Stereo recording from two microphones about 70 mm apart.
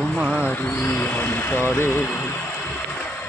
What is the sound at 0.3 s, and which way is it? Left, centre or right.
Speech, left.